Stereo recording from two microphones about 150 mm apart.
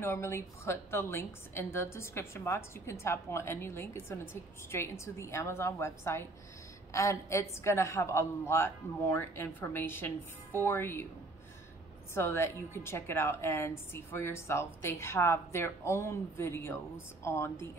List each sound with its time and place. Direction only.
0.0 s a woman's voice: 15° left (ahead or behind)
12.1 s a woman's voice: 15° left (ahead or behind)